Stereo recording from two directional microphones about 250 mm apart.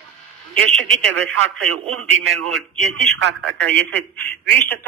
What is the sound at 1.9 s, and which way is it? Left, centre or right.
Speech, right.